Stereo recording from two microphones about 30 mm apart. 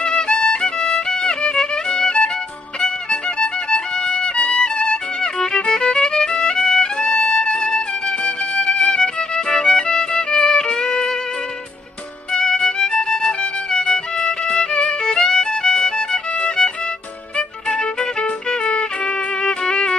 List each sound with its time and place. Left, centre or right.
0.0 s music: left
4.1 s violin: left
12.3 s music: left